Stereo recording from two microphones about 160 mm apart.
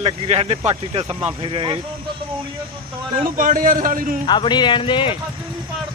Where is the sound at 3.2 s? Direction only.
60° right (ahead or behind).